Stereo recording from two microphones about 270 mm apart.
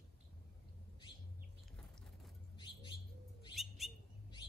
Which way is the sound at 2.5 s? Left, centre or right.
Centre.